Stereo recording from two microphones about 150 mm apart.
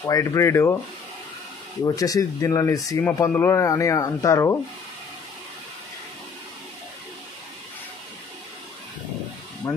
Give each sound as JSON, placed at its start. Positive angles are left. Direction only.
{"t": 0.0, "sound": "speech", "side_deg": 25}
{"t": 1.9, "sound": "speech", "side_deg": 25}
{"t": 9.6, "sound": "speech", "side_deg": 25}